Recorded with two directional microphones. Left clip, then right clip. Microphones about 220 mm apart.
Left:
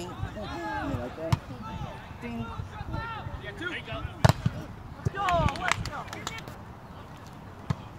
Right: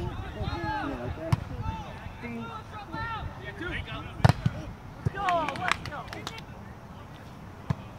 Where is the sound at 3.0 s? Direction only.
35° right (ahead or behind).